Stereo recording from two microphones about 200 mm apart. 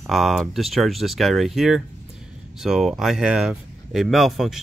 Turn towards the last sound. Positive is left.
turn(degrees=0)  # may be behind; listen again after turning